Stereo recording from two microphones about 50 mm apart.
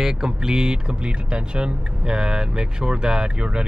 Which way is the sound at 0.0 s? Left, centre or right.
Centre.